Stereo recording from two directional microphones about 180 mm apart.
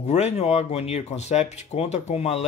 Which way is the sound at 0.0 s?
40° left (ahead or behind).